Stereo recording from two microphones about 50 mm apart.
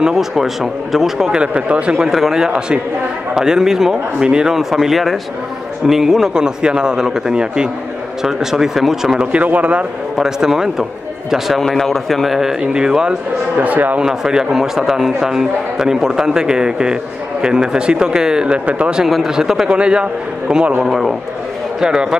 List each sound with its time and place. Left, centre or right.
0.0 s a man's voice: centre
1.4 s a man's voice: right
2.0 s a man's voice: centre
9.2 s a man's voice: right
10.1 s a man's voice: centre
13.6 s speech: right
14.0 s a man's voice: centre
19.0 s a man's voice: centre
19.7 s a man's voice: right
20.8 s a man's voice: centre